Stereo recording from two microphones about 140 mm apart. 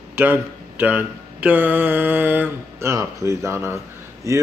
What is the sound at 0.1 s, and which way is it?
Speech, 15° right (ahead or behind).